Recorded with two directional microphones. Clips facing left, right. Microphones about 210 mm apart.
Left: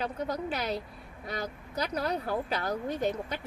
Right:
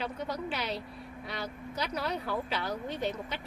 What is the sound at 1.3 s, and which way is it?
Speech, 45° left (ahead or behind).